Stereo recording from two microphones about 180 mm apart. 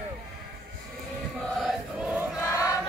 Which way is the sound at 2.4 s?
15° left (ahead or behind).